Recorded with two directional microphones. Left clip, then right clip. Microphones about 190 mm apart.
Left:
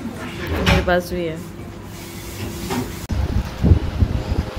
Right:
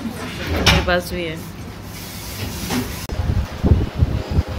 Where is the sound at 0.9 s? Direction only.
20° left (ahead or behind).